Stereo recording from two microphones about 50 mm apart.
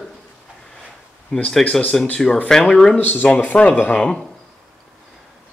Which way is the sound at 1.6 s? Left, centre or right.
Left.